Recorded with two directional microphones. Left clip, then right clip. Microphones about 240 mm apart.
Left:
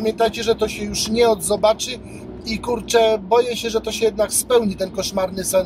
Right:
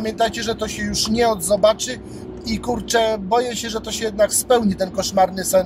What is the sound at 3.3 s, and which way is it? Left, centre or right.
Speech, centre.